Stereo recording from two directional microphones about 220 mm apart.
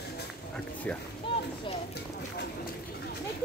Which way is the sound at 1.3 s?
25° left (ahead or behind).